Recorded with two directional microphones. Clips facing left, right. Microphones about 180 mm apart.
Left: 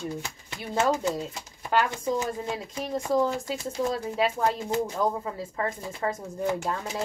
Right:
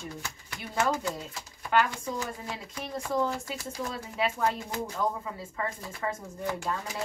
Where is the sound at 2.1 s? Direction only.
25° left (ahead or behind).